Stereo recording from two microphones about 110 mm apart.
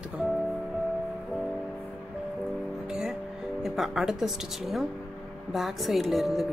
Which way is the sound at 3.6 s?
Centre (ahead or behind).